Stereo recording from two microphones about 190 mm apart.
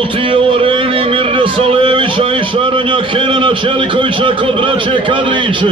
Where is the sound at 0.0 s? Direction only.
25° right (ahead or behind).